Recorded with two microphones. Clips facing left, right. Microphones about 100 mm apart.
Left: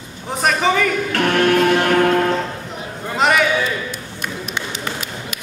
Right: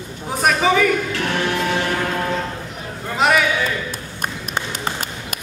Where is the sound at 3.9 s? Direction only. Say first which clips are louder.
Even; 45° right (ahead or behind).